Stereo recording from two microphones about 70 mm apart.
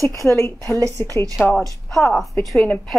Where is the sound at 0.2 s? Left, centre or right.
Left.